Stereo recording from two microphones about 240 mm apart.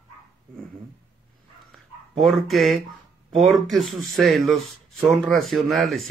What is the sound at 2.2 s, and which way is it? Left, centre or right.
Speech, centre.